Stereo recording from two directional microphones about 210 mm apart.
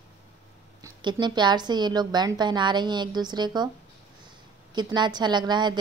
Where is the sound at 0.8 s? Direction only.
20° right (ahead or behind).